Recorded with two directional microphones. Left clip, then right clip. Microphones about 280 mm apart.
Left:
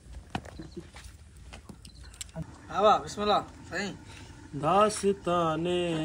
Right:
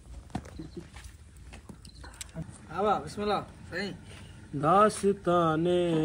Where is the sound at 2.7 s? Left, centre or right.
Left.